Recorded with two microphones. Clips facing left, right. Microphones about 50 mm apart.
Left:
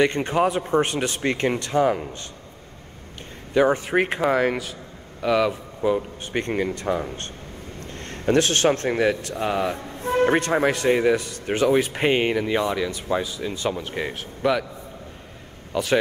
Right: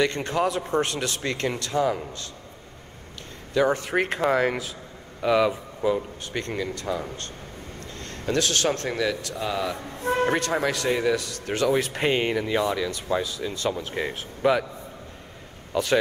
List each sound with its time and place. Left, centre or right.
0.0 s speech: left
3.5 s speech: centre
4.2 s speech: centre
6.3 s speech: left; by 14.1 s centre
14.4 s a man's voice: centre
15.7 s a man's voice: centre